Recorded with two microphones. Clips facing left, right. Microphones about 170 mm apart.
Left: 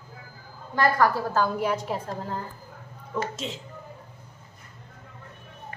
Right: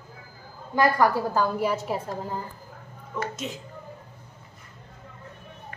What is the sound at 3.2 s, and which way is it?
Speech, 25° left (ahead or behind).